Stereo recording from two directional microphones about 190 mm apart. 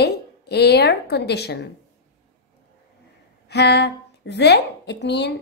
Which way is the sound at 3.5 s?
60° left (ahead or behind).